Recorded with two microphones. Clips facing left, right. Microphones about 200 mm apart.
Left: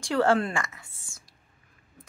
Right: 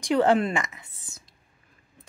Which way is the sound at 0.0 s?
20° right (ahead or behind).